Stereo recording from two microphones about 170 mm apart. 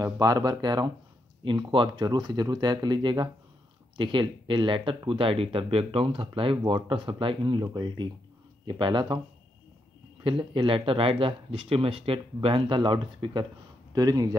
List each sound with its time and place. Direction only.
0.0 s speech: 20° right (ahead or behind)
10.2 s speech: 30° right (ahead or behind)